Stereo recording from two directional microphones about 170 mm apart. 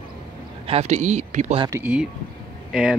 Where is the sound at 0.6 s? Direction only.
40° right (ahead or behind).